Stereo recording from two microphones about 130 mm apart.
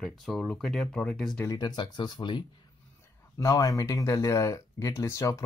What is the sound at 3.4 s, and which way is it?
Speech, 25° left (ahead or behind).